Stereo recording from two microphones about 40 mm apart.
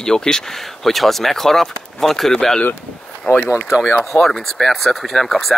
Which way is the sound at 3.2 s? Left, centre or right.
Left.